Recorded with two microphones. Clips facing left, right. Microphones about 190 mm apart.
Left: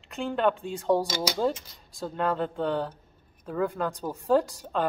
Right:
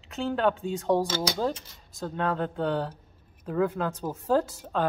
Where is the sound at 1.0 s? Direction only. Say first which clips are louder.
Right 1 dB; 10° left (ahead or behind).